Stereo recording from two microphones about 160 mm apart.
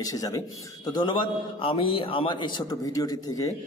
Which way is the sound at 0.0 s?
20° left (ahead or behind).